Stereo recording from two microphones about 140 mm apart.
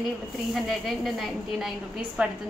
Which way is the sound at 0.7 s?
Centre (ahead or behind).